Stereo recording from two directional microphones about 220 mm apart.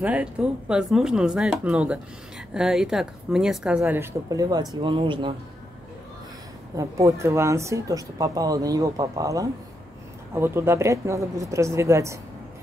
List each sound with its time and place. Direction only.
0.0 s a woman's voice: 5° right (ahead or behind); by 5.3 s 20° right (ahead or behind)
6.8 s a woman's voice: 15° right (ahead or behind)